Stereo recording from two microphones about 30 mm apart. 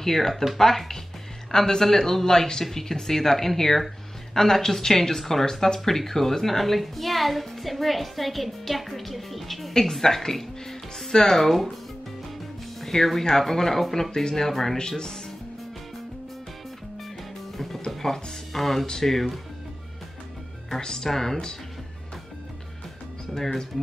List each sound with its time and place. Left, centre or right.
0.0 s a woman's voice: centre
9.9 s speech: centre
12.8 s speech: centre
14.5 s a woman's voice: centre
14.8 s speech: left
18.0 s a woman's voice: centre
20.8 s speech: left
21.1 s speech: centre
23.3 s speech: centre